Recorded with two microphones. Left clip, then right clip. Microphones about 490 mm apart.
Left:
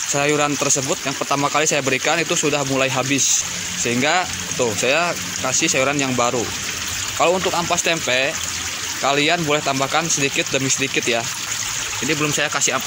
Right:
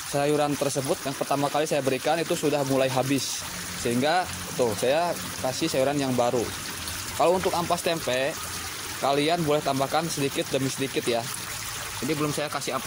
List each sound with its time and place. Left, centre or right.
0.1 s speech: right